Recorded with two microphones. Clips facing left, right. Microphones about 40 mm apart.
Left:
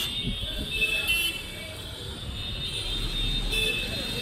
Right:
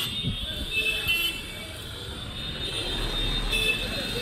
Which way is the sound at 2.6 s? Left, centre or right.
Centre.